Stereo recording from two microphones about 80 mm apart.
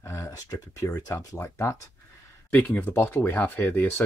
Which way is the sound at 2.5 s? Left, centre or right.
Left.